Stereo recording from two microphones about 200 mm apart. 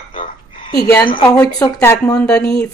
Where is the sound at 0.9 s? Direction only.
20° left (ahead or behind); by 2.4 s 5° left (ahead or behind).